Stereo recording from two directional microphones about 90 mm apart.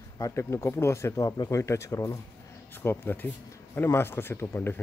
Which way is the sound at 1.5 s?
35° left (ahead or behind).